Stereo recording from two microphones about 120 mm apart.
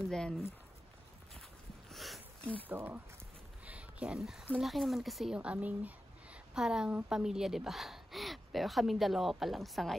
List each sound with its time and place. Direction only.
0.0 s speech: 5° left (ahead or behind)
1.9 s a sound: centre (ahead or behind)
2.7 s speech: 15° right (ahead or behind); by 9.9 s centre (ahead or behind)